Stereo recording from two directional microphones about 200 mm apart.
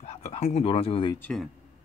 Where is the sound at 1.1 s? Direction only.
10° left (ahead or behind).